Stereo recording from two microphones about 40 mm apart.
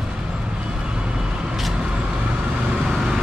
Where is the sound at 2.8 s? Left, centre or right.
Centre.